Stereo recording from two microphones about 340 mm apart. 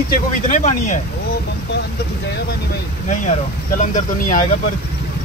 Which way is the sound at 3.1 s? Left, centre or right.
Left.